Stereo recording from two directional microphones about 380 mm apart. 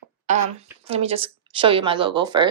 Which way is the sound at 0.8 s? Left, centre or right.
Centre.